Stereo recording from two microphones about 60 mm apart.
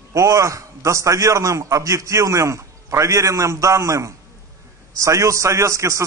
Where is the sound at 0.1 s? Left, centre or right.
Right.